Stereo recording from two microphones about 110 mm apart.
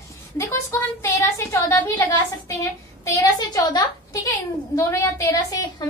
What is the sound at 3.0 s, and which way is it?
Speech, 30° left (ahead or behind).